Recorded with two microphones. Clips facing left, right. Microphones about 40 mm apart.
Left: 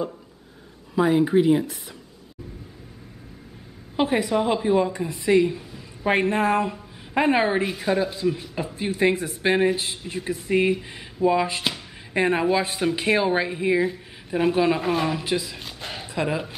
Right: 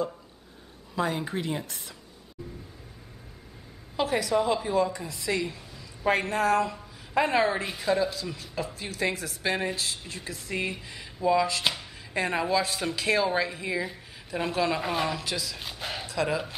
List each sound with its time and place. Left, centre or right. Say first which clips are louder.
0.9 s speech: left 10 dB; centre
3.9 s speech: left 4 dB; left
7.6 s speech: left 3 dB; centre
8.1 s speech: left 10 dB; left
13.8 s a woman's voice: left 10 dB; centre
14.8 s speech: left 5 dB; centre
15.2 s speech: left 7 dB; left
15.6 s a sound: even; centre
16.1 s speech: left 3 dB; left